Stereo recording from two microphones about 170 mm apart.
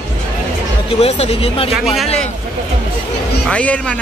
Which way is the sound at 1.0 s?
40° left (ahead or behind).